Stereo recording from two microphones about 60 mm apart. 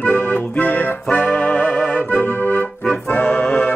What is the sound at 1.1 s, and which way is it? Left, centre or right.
Music, left.